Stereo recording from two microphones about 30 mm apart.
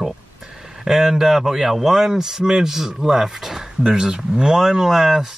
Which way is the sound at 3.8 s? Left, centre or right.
Right.